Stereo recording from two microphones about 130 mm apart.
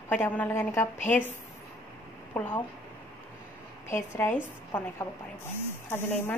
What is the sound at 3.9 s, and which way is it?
Speech, 20° left (ahead or behind).